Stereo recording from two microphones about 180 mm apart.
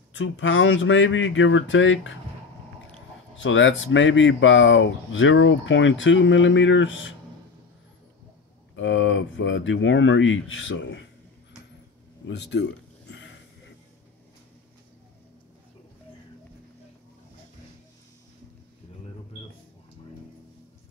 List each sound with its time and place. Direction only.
0.1 s speech: 90° left
3.3 s speech: 90° left
8.7 s speech: 90° left
12.3 s speech: 75° left (ahead or behind)